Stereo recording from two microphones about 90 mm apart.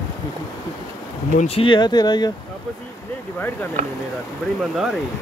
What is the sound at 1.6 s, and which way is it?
Speech, 60° left (ahead or behind).